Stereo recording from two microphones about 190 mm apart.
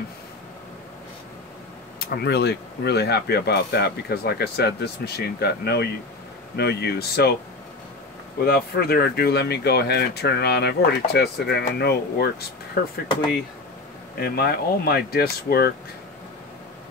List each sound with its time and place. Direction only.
2.0 s speech: 60° left (ahead or behind)
8.5 s speech: 55° left (ahead or behind)
14.2 s speech: 55° left (ahead or behind)